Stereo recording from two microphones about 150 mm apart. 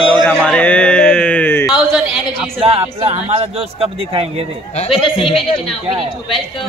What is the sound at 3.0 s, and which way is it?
A man's voice, 40° right (ahead or behind).